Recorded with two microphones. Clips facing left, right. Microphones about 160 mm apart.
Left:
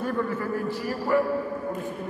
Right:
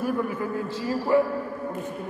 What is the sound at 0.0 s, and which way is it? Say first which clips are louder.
A man's voice: right 1 dB; 15° right (ahead or behind).